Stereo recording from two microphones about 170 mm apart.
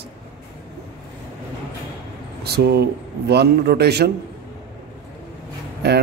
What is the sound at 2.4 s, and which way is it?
A man's voice, 75° right (ahead or behind).